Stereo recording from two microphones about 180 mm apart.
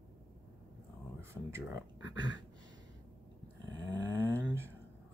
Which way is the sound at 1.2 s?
15° right (ahead or behind).